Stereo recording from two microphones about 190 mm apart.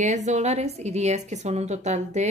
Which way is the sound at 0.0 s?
40° right (ahead or behind).